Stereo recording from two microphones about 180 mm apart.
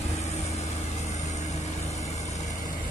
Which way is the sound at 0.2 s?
40° left (ahead or behind).